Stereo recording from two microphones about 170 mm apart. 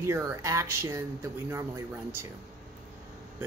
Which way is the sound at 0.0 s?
15° right (ahead or behind).